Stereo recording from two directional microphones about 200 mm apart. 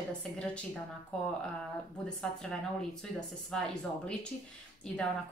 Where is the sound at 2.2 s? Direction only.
5° left (ahead or behind).